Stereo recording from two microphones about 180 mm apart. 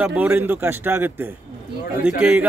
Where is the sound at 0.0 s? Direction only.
10° right (ahead or behind).